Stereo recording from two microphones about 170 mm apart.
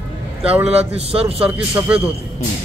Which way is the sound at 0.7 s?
40° right (ahead or behind).